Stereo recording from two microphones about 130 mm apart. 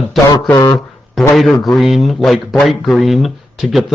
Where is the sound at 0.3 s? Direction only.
30° left (ahead or behind).